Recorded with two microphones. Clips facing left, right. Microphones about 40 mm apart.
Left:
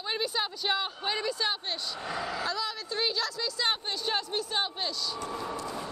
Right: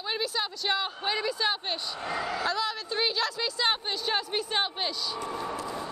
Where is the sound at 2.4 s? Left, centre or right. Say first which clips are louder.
Right 6 dB; right.